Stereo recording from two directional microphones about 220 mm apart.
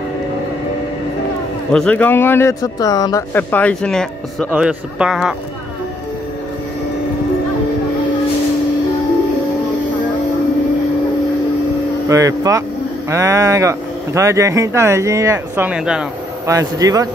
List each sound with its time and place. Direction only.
1.7 s speech: 5° left (ahead or behind)
12.1 s speech: 15° right (ahead or behind)
16.4 s speech: 15° right (ahead or behind)